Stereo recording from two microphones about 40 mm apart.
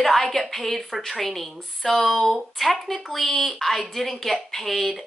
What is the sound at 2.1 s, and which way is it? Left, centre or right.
Speech, centre.